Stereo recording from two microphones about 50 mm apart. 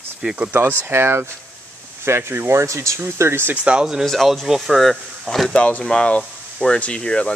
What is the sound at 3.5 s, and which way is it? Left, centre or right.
Speech, right.